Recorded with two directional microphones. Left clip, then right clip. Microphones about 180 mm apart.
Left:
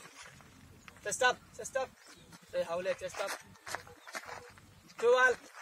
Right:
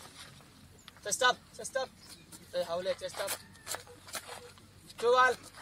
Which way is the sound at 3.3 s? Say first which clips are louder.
Even; 35° right (ahead or behind).